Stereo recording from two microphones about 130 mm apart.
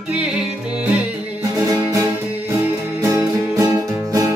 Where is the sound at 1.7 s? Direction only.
25° right (ahead or behind).